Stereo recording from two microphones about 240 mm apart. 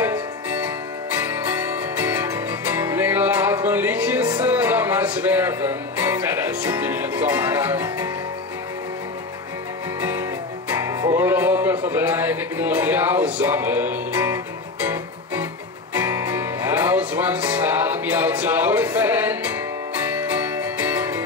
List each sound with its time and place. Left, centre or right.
2.0 s music: centre
4.4 s speech: centre
11.1 s a sound: centre
16.0 s music: centre
20.3 s music: centre